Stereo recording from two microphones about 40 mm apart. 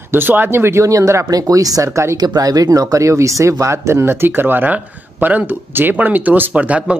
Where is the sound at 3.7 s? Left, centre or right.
Right.